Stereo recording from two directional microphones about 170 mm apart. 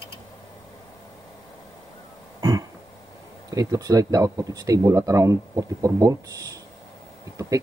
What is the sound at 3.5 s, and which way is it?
Speech, 20° right (ahead or behind).